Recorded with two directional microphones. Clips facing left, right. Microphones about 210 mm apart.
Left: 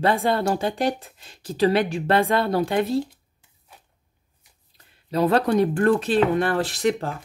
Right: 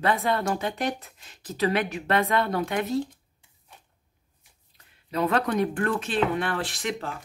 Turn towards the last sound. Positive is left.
turn(degrees=40)  # may be behind; listen again after turning